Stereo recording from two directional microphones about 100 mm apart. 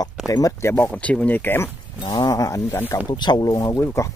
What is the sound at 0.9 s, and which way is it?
Speech, 10° left (ahead or behind).